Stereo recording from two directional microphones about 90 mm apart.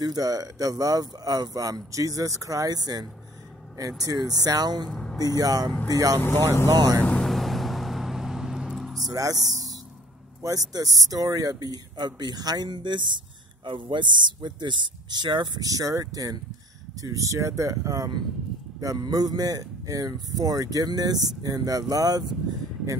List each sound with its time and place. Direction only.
0.0 s speech: 45° right (ahead or behind)
4.8 s speech: centre (ahead or behind)
5.2 s speech: 45° right (ahead or behind)
7.0 s speech: 15° left (ahead or behind)
7.2 s vehicle: centre (ahead or behind)
9.0 s speech: 40° right (ahead or behind)
10.4 s speech: 40° right (ahead or behind)